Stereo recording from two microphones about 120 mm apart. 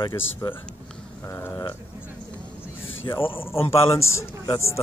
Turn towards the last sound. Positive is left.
turn(degrees=25)  # may be behind; listen again after turning